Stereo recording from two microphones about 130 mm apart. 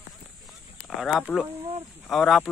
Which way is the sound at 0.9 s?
Centre (ahead or behind).